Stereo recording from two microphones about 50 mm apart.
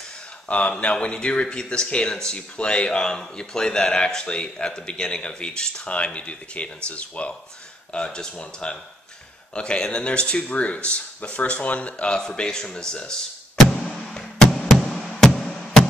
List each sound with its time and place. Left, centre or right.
0.5 s speech: left
12.2 s speech: centre
13.7 s music: centre